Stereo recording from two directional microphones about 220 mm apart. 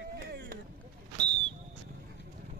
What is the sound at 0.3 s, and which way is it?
Boat, 45° right (ahead or behind).